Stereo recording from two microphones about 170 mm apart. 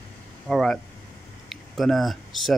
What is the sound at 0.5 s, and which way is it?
Speech, centre (ahead or behind).